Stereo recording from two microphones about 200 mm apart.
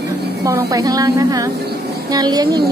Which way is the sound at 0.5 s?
15° right (ahead or behind).